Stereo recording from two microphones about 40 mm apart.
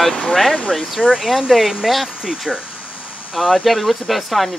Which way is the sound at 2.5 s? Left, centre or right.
Right.